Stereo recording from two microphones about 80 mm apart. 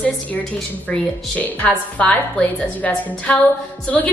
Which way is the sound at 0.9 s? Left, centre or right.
Centre.